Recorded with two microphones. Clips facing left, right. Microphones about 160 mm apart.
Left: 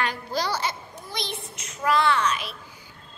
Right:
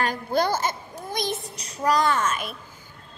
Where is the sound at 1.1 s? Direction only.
45° right (ahead or behind).